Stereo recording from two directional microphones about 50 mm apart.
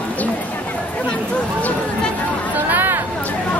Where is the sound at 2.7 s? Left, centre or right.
Right.